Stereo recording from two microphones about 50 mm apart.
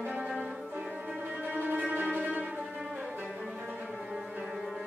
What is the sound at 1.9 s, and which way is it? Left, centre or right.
Music, right.